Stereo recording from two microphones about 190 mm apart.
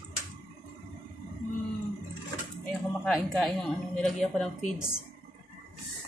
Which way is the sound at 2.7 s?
5° left (ahead or behind).